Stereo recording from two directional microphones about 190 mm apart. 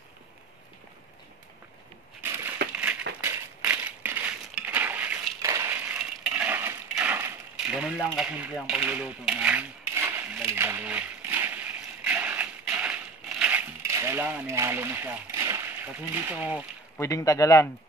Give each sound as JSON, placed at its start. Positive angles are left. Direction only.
{"t": 2.2, "sound": "crushing", "side_deg": -10}
{"t": 8.6, "sound": "coin", "side_deg": -5}
{"t": 16.9, "sound": "speech", "side_deg": 15}